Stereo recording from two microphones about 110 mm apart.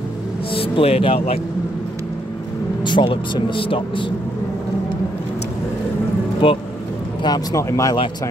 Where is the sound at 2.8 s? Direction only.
45° left (ahead or behind).